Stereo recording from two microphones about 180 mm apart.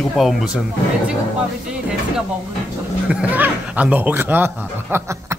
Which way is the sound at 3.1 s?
5° right (ahead or behind).